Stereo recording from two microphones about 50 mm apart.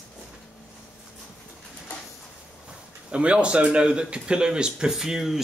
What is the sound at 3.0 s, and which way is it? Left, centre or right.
A man's voice, right.